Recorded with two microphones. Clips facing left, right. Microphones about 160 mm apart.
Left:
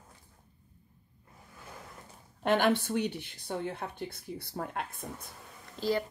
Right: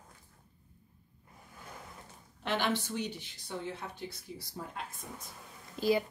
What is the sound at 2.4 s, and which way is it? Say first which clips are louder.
Speech: left 6 dB; 50° left (ahead or behind).